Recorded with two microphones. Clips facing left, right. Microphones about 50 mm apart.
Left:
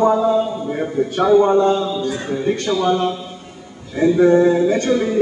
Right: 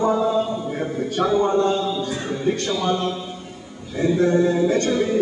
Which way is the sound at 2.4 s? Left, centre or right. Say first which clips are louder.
Left 4 dB; centre.